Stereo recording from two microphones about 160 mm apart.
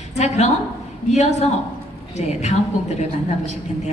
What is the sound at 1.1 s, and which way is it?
Speech, 45° left (ahead or behind).